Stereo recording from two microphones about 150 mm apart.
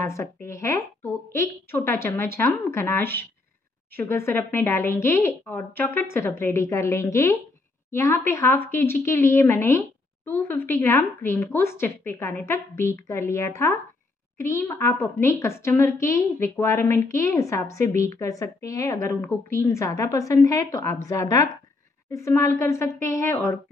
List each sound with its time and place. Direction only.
0.0 s a woman's voice: 20° left (ahead or behind)
22.1 s speech: 20° left (ahead or behind)